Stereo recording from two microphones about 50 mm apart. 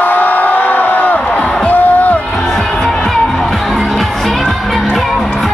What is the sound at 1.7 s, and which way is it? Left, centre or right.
Music, left.